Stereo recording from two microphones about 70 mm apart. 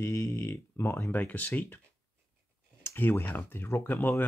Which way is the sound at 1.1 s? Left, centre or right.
Left.